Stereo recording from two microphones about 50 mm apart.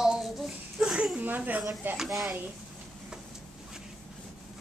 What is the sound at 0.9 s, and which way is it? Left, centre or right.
Speech, right.